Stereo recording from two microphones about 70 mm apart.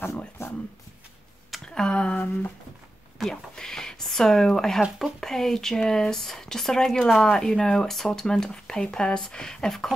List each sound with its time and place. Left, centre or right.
0.4 s a sound: left
1.5 s speech: centre
3.2 s speech: centre